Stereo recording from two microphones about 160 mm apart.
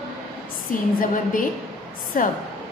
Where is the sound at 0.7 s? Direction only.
60° left (ahead or behind).